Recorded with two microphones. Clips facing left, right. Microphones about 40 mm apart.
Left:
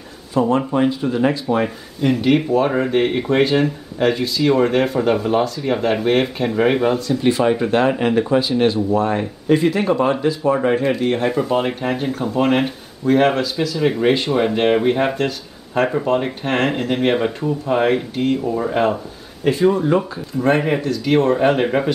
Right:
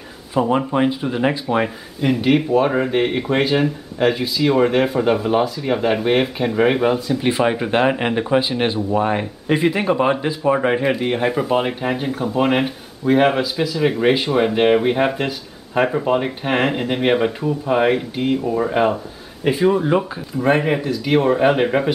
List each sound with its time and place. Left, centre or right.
0.3 s speech: centre